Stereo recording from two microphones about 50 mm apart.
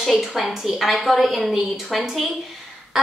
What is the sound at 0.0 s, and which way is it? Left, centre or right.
A woman's voice, centre.